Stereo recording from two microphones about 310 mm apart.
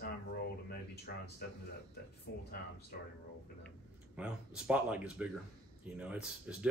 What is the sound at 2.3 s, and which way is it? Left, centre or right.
Speech, left.